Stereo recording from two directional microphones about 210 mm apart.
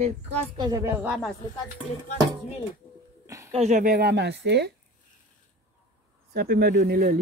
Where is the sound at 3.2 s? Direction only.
15° right (ahead or behind).